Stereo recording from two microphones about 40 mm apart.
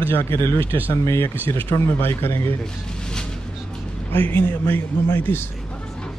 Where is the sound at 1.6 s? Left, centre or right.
Left.